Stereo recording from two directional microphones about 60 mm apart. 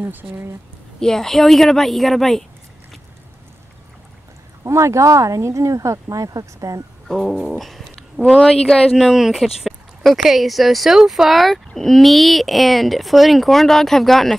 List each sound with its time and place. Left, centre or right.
0.0 s speech: right
1.0 s speech: centre
4.6 s speech: right
7.1 s speech: centre
8.8 s speech: centre